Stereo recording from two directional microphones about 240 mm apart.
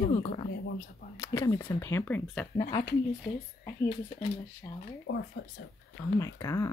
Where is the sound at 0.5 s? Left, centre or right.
Left.